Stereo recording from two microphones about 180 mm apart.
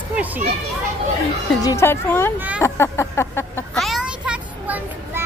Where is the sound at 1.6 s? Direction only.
15° left (ahead or behind).